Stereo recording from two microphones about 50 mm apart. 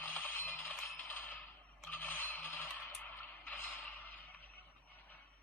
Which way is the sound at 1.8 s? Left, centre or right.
Left.